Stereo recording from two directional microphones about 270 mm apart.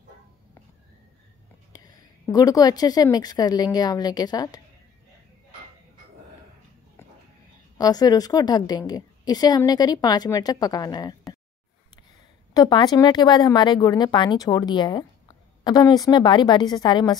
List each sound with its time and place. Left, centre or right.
2.3 s a woman's voice: centre
7.7 s a woman's voice: centre
12.5 s a woman's voice: centre